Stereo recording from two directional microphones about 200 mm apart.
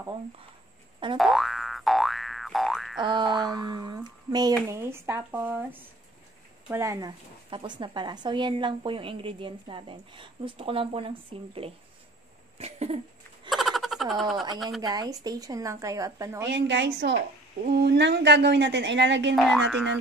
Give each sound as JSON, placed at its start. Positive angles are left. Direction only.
{"t": 1.1, "sound": "boing", "side_deg": 0}
{"t": 3.0, "sound": "boing", "side_deg": -20}
{"t": 3.3, "sound": "a sound", "side_deg": 0}
{"t": 3.6, "sound": "a sound", "side_deg": -15}
{"t": 4.6, "sound": "a woman's voice", "side_deg": -15}
{"t": 12.5, "sound": "cough", "side_deg": -30}
{"t": 13.5, "sound": "a sound", "side_deg": 0}
{"t": 14.8, "sound": "a woman's voice", "side_deg": -20}
{"t": 16.4, "sound": "speech", "side_deg": -60}
{"t": 19.3, "sound": "frog", "side_deg": 0}